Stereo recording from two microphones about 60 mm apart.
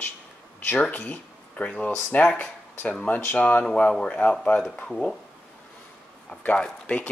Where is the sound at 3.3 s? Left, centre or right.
Left.